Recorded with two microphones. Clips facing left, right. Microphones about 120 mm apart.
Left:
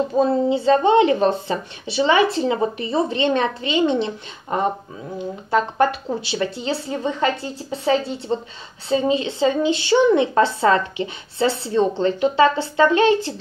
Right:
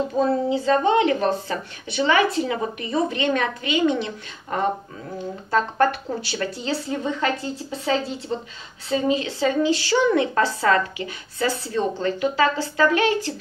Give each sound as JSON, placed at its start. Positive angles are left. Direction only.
{"t": 0.2, "sound": "a woman's voice", "side_deg": 25}